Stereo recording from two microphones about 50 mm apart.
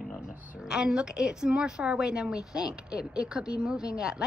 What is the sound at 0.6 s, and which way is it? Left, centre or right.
A woman's voice, centre.